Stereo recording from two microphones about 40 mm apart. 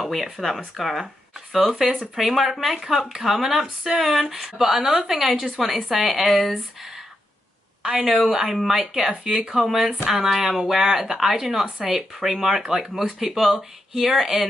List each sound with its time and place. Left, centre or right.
0.0 s speech: centre
7.8 s a woman's voice: centre